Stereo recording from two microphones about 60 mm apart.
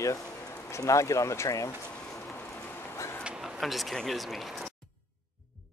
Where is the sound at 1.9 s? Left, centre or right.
Centre.